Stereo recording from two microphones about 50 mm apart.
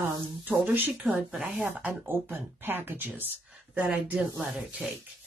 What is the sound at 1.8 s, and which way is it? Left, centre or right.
Speech, right.